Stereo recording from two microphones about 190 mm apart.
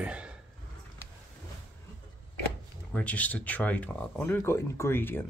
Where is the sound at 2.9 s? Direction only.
10° left (ahead or behind).